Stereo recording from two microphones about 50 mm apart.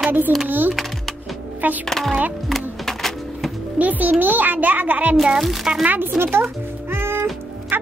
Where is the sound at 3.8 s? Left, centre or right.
Right.